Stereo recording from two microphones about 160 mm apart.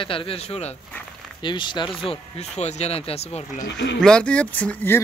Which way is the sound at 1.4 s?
30° left (ahead or behind).